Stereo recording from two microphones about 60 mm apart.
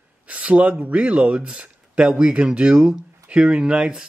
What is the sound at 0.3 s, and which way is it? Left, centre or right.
Speech, right.